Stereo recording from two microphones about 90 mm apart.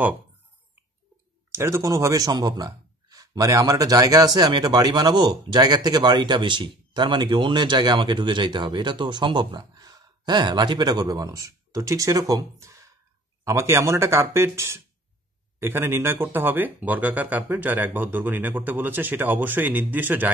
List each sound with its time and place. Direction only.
1.5 s speech: 30° right (ahead or behind)